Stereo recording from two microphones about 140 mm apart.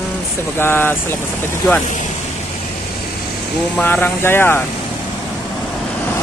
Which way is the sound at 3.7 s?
15° left (ahead or behind).